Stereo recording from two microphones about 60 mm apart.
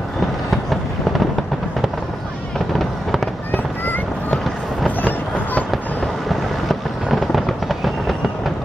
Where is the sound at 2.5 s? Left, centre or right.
Centre.